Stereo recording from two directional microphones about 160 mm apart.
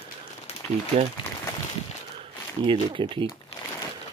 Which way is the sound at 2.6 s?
30° right (ahead or behind).